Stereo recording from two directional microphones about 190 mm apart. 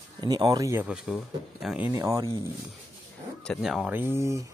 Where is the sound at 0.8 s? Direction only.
Centre (ahead or behind).